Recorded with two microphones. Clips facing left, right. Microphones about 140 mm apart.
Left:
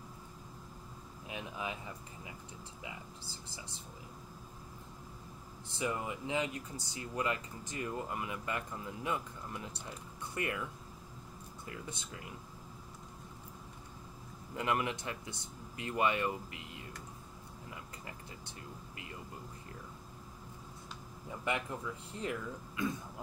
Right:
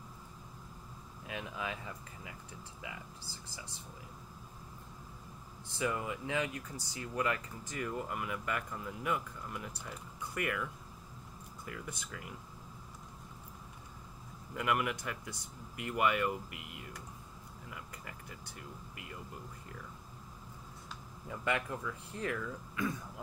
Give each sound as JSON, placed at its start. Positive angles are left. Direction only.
{"t": 1.2, "sound": "speech", "side_deg": 20}
{"t": 5.8, "sound": "speech", "side_deg": 25}
{"t": 14.5, "sound": "speech", "side_deg": 25}
{"t": 21.3, "sound": "speech", "side_deg": 20}